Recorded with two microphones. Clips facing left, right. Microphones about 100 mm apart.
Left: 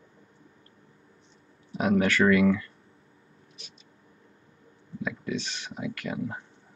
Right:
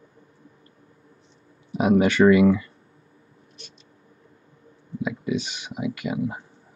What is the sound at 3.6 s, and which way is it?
Vehicle, centre (ahead or behind).